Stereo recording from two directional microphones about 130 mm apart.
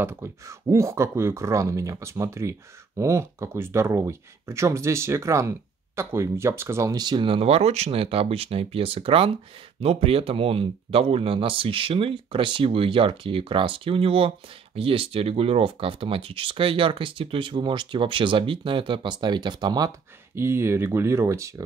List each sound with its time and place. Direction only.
0.0 s speech: 20° right (ahead or behind)
20.3 s speech: 20° right (ahead or behind)